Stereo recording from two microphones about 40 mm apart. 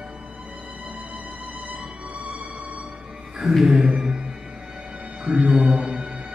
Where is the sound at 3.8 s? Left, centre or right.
Right.